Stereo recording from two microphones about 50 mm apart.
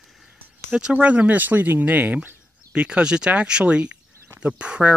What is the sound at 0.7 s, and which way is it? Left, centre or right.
Speech, right.